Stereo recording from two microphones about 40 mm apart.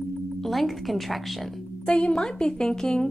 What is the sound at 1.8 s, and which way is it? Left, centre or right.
A woman's voice, left.